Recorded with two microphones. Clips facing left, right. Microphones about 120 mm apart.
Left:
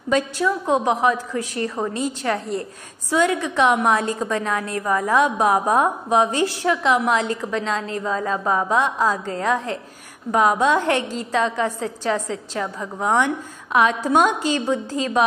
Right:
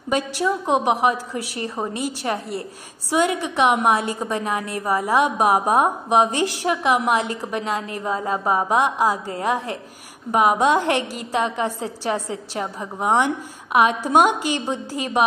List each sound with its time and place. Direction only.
0.7 s a woman's voice: 20° right (ahead or behind)